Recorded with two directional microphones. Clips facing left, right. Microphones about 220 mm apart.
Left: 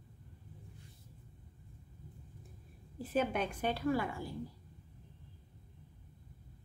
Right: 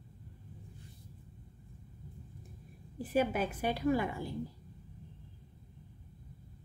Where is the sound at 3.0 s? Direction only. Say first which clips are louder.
Right 3 dB; 10° right (ahead or behind).